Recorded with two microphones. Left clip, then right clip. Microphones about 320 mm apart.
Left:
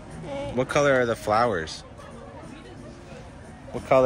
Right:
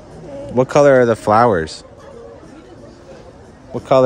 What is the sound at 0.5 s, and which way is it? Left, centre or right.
Speech, right.